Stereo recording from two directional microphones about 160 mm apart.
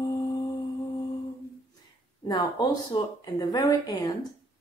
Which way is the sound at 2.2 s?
25° left (ahead or behind).